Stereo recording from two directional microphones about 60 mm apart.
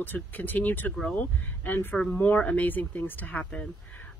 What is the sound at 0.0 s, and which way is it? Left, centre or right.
Speech, left.